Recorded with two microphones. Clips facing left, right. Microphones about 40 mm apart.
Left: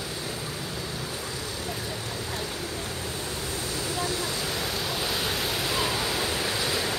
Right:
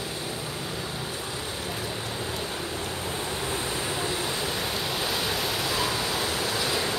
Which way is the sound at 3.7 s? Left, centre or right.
Right.